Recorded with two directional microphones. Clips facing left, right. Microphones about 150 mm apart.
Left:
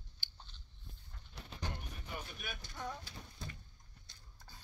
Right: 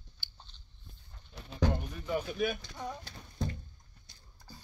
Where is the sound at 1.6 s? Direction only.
90° right.